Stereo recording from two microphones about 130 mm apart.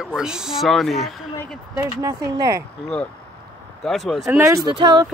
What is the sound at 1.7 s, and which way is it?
Speech, 30° right (ahead or behind).